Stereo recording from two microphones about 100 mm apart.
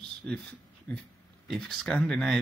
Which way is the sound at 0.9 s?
15° left (ahead or behind).